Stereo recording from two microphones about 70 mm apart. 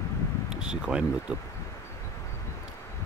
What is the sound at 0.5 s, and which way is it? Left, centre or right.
Speech, centre.